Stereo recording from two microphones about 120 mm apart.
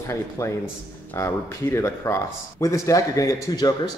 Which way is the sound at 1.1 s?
20° left (ahead or behind).